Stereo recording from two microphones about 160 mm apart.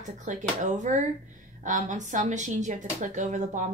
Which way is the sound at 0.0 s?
50° right (ahead or behind).